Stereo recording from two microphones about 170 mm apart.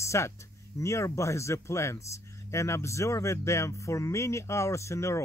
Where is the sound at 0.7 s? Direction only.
15° left (ahead or behind).